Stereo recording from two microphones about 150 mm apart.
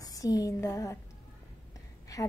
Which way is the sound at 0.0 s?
25° left (ahead or behind).